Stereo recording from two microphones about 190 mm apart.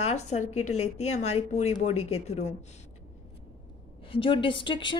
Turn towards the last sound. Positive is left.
turn(degrees=25)  # may be behind; listen again after turning